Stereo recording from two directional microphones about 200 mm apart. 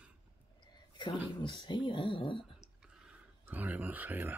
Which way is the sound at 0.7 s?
20° left (ahead or behind).